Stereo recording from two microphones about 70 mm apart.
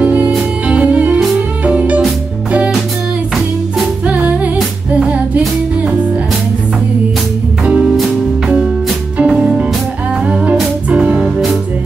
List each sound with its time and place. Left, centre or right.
0.0 s music: right
4.0 s music: centre
7.6 s music: centre
9.2 s music: centre